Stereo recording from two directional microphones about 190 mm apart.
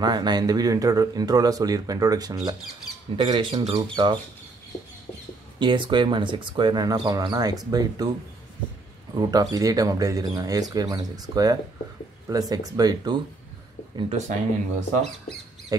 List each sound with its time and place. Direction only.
0.0 s speech: 20° right (ahead or behind)
5.6 s speech: 25° right (ahead or behind)
9.1 s speech: 20° right (ahead or behind)